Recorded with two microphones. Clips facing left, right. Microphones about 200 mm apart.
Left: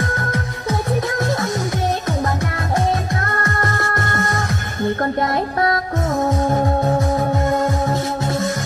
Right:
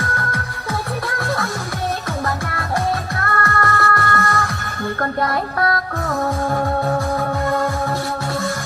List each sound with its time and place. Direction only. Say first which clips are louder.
0.0 s music: left 3 dB; 20° left (ahead or behind)
3.2 s music: right 1 dB; 20° left (ahead or behind)